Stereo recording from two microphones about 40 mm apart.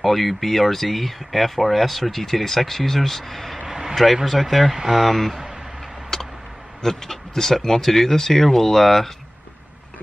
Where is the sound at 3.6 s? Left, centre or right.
Centre.